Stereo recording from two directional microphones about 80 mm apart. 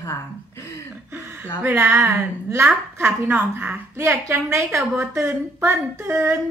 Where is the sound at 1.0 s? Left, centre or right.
Right.